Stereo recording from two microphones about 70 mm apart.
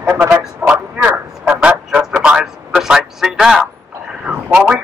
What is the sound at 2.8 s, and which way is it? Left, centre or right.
Speech, centre.